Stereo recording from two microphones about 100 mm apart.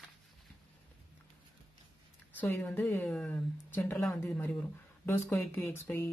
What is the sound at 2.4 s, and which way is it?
Speech, 20° left (ahead or behind).